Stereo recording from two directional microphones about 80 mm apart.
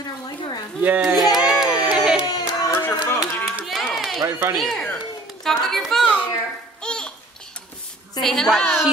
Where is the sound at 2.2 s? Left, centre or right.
Left.